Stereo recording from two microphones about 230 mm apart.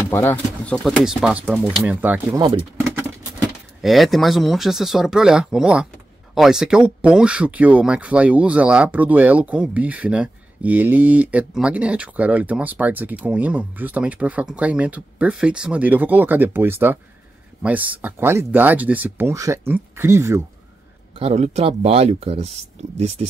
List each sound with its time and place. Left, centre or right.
0.1 s speech: centre
21.2 s speech: right